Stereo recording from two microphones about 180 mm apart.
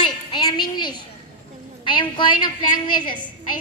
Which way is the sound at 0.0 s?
25° left (ahead or behind).